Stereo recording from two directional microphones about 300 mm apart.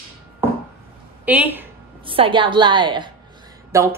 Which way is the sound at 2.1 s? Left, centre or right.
Centre.